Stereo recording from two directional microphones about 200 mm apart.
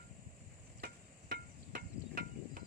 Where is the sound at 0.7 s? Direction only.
50° right (ahead or behind).